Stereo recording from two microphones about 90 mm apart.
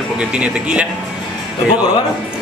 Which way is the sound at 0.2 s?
10° right (ahead or behind).